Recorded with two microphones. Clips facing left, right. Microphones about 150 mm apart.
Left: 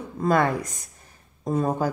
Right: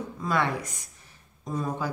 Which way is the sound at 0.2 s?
45° left (ahead or behind).